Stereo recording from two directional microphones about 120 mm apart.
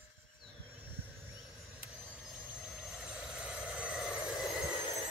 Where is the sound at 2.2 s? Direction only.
Centre (ahead or behind).